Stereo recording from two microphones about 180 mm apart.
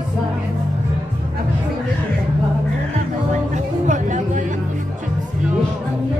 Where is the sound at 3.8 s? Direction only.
45° right (ahead or behind).